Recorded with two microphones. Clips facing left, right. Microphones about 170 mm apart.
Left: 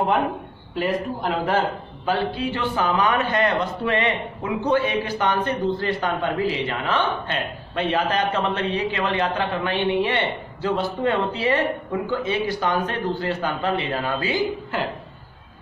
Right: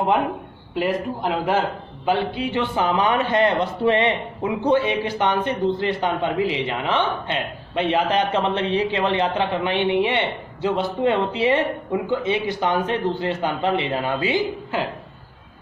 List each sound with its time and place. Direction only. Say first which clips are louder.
0.7 s a man's voice: right 1 dB; 10° right (ahead or behind)